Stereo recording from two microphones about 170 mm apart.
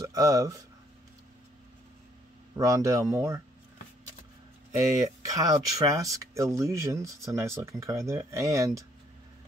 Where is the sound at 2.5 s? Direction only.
20° right (ahead or behind).